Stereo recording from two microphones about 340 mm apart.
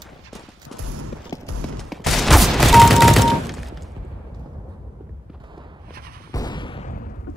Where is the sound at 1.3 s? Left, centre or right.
Centre.